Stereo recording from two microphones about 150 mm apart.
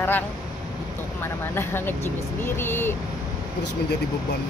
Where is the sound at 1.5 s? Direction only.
15° left (ahead or behind).